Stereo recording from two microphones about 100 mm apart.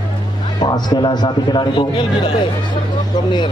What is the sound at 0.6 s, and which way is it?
A man's voice, 45° left (ahead or behind).